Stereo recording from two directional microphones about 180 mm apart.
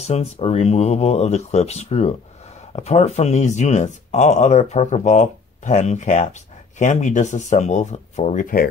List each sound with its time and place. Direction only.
0.0 s speech: 35° left (ahead or behind)